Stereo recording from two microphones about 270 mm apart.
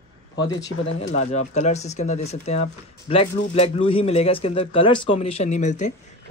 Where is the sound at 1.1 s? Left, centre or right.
Left.